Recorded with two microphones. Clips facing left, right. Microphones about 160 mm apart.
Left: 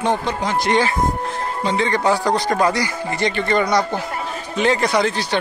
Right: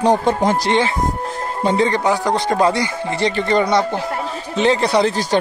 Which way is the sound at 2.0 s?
20° right (ahead or behind).